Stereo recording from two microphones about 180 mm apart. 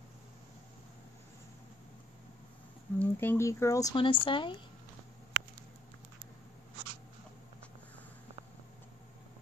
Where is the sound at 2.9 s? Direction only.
10° left (ahead or behind); by 4.6 s 25° left (ahead or behind).